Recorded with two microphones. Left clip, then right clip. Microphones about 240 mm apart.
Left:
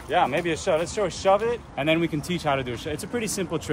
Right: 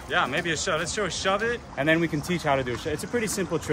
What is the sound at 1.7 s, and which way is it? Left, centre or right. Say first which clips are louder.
Speech: right 2 dB; centre.